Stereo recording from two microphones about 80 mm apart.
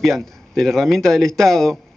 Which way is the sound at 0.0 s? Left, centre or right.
Centre.